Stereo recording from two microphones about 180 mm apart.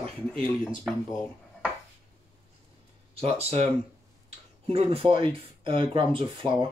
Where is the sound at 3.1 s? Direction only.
35° right (ahead or behind).